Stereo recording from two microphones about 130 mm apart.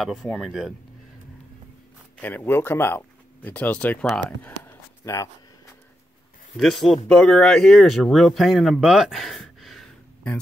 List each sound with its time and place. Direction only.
0.0 s speech: centre (ahead or behind)
2.2 s speech: 15° left (ahead or behind)
5.0 s speech: 25° left (ahead or behind)
6.5 s speech: centre (ahead or behind)